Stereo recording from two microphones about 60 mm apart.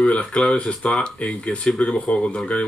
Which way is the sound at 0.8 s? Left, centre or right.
Centre.